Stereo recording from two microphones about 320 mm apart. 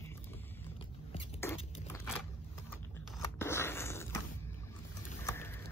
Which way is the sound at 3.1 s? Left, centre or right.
Centre.